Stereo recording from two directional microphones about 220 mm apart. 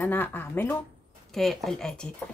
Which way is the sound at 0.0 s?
10° left (ahead or behind).